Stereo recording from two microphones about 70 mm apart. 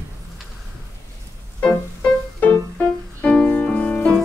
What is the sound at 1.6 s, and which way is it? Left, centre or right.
Music, centre.